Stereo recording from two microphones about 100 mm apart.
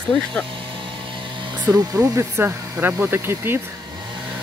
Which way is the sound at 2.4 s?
20° right (ahead or behind).